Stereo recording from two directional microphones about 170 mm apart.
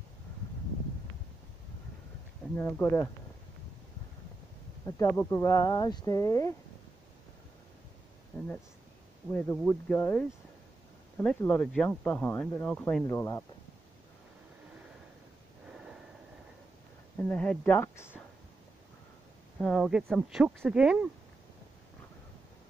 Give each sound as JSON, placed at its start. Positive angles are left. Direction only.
{"t": 2.5, "sound": "speech", "side_deg": 10}
{"t": 4.8, "sound": "speech", "side_deg": 15}
{"t": 8.3, "sound": "a sound", "side_deg": 5}
{"t": 9.3, "sound": "speech", "side_deg": 10}
{"t": 15.7, "sound": "a sound", "side_deg": -5}
{"t": 17.2, "sound": "speech", "side_deg": 5}
{"t": 19.6, "sound": "speech", "side_deg": 0}